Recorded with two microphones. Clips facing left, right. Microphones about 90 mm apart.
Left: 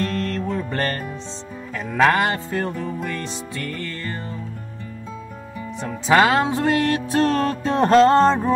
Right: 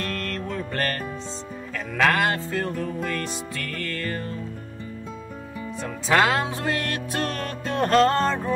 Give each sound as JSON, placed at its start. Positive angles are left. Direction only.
{"t": 0.0, "sound": "music", "side_deg": 30}
{"t": 5.8, "sound": "music", "side_deg": 25}